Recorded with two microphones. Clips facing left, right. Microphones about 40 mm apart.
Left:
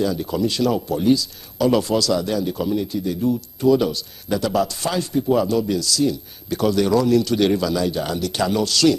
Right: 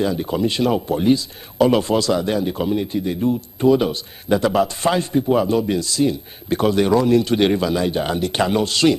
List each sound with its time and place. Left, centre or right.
0.0 s speech: right